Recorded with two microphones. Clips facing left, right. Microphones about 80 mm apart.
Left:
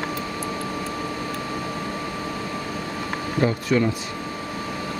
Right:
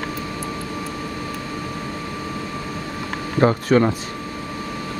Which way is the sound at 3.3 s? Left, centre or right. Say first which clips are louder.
Right 5 dB; right.